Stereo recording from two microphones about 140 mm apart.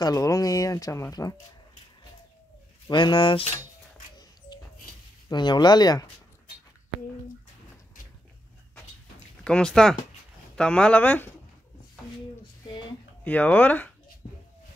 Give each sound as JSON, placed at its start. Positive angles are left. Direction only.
{"t": 0.0, "sound": "speech", "side_deg": 25}
{"t": 2.9, "sound": "speech", "side_deg": 35}
{"t": 5.3, "sound": "speech", "side_deg": 30}
{"t": 9.4, "sound": "speech", "side_deg": 5}
{"t": 13.2, "sound": "speech", "side_deg": 10}